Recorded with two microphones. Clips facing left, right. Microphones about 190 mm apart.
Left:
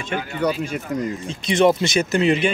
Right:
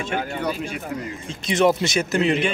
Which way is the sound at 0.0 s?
45° right (ahead or behind).